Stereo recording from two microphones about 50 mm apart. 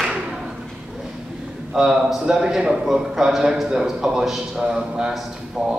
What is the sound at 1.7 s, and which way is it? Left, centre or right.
A man's voice, centre.